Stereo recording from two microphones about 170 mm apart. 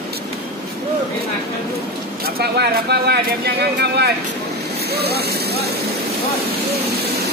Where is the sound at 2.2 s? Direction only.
75° right (ahead or behind).